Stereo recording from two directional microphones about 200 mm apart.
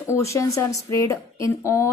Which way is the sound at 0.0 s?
15° left (ahead or behind).